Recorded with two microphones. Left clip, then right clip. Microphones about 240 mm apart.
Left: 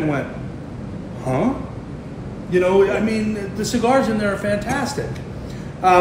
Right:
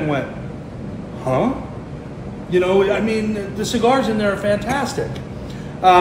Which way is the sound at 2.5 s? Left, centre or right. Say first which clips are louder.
Even; centre.